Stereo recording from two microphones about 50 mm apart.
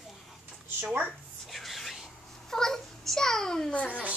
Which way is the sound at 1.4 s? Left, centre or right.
Centre.